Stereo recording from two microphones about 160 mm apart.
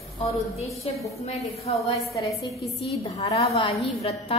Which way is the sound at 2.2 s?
20° left (ahead or behind).